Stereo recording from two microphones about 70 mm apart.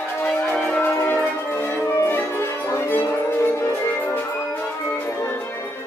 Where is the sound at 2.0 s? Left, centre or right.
Left.